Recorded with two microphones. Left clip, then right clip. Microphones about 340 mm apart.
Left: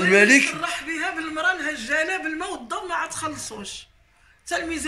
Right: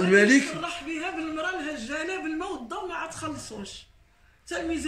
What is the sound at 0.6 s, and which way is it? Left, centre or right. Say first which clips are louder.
A man's voice: left 5 dB; centre.